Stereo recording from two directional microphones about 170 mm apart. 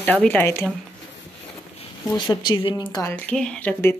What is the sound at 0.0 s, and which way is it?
Speech, 10° left (ahead or behind).